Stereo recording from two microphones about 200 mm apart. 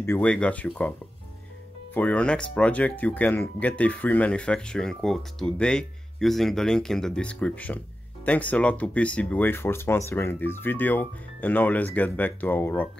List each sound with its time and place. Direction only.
0.0 s speech: 10° left (ahead or behind)
2.0 s speech: 5° left (ahead or behind)